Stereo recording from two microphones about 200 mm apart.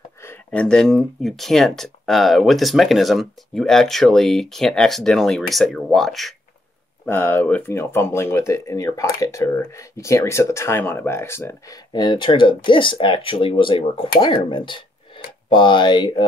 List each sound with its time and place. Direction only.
0.2 s speech: 10° left (ahead or behind)